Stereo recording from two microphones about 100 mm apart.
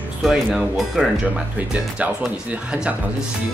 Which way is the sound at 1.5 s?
15° right (ahead or behind).